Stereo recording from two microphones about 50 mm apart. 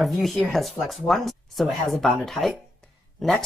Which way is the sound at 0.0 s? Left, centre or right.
Centre.